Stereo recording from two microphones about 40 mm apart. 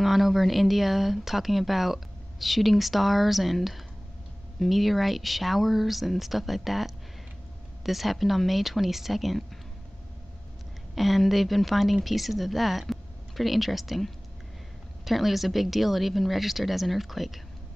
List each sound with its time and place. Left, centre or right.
0.0 s speech: centre
4.6 s speech: centre
11.0 s speech: centre